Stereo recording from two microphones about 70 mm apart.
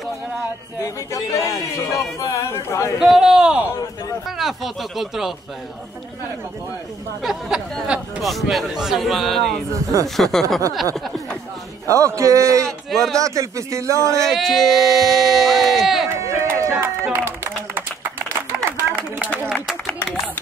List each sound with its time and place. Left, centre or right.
0.8 s speech: left
3.0 s a man's voice: centre
7.2 s a man's voice: centre
11.9 s speech: right
12.6 s speech: centre
13.2 s speech: right
14.1 s speech: centre
16.1 s a sound: right
16.8 s run: right
18.5 s a sound: right
19.5 s a sound: centre